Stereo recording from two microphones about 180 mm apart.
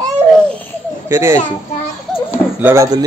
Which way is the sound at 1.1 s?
15° right (ahead or behind).